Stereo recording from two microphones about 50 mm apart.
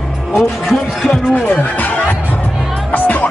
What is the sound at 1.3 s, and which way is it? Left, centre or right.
Speech, left.